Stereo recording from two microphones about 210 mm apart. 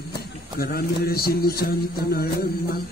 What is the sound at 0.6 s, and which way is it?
Mantra, 45° left (ahead or behind).